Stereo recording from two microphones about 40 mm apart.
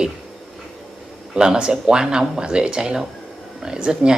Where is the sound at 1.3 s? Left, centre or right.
Centre.